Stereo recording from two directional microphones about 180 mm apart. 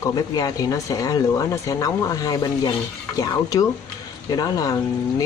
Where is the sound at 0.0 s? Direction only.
20° left (ahead or behind).